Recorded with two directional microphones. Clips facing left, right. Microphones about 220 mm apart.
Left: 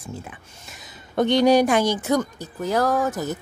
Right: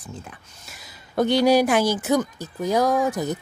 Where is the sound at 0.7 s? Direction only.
5° right (ahead or behind).